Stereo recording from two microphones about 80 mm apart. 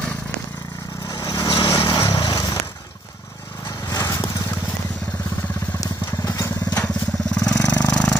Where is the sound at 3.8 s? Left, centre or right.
Left.